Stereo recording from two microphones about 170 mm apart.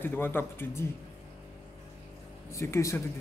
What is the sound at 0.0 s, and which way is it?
Speech, 10° left (ahead or behind).